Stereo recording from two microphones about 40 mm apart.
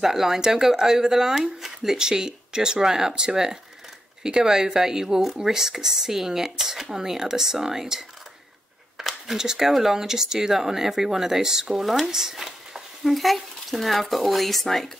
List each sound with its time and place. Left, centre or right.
0.0 s speech: centre
8.9 s a sound: centre
9.4 s speech: centre
11.8 s speech: centre